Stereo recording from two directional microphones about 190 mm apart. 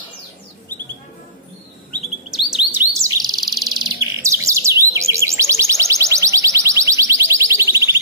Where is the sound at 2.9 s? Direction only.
15° right (ahead or behind).